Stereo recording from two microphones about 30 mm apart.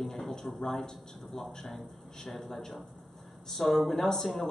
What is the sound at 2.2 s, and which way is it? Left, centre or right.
A man's voice, centre.